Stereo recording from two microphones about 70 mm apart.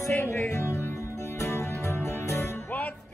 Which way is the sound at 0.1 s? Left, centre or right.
Left.